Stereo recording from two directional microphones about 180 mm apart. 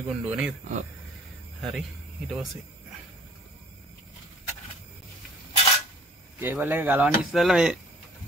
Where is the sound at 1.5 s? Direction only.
Centre (ahead or behind).